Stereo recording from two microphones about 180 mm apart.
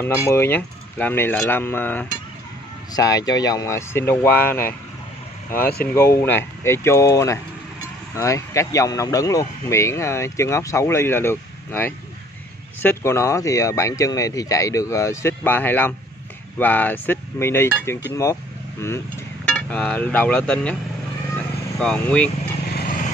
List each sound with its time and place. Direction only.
0.0 s speech: 10° left (ahead or behind)
5.9 s speech: 15° left (ahead or behind)
16.5 s cutlery: 10° left (ahead or behind)
19.4 s speech: 5° left (ahead or behind)
21.7 s speech: 5° left (ahead or behind)
22.7 s vehicle: 55° left (ahead or behind)